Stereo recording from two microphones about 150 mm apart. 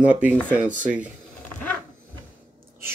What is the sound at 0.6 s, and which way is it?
Speech, 60° right (ahead or behind).